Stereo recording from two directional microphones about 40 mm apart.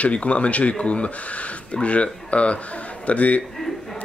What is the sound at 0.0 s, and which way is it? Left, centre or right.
Speech, left.